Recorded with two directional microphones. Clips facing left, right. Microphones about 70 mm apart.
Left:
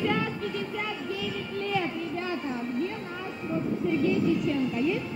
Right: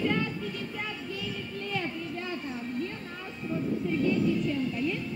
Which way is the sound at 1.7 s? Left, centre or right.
Centre.